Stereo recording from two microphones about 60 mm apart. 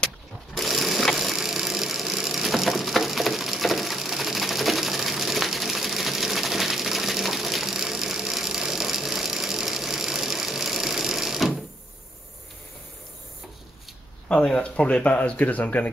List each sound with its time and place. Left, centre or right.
0.6 s sewing machine: centre
14.3 s speech: centre